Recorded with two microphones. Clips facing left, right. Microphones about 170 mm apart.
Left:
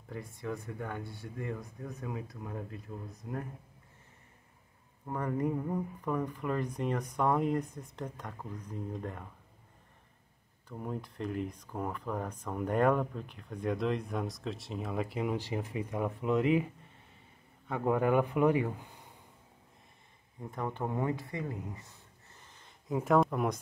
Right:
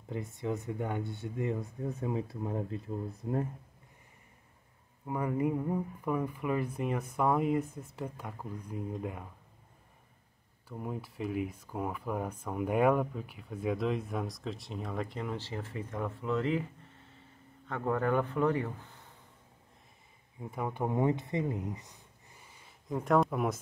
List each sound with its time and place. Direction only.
0.1 s speech: 20° right (ahead or behind)
5.0 s speech: 10° right (ahead or behind)
10.7 s speech: 5° right (ahead or behind); by 16.6 s 15° left (ahead or behind)
17.6 s a man's voice: 10° left (ahead or behind)
20.3 s speech: 10° right (ahead or behind)
22.8 s speech: centre (ahead or behind)